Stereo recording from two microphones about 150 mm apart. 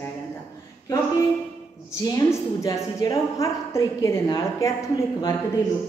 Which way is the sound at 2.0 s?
20° left (ahead or behind).